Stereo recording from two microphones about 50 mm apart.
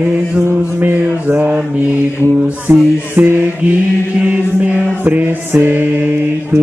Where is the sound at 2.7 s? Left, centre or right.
Right.